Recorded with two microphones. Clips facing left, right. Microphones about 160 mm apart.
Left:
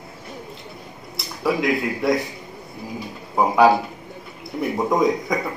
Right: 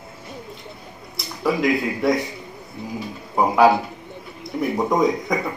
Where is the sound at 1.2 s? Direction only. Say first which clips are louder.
Right 1 dB; centre (ahead or behind).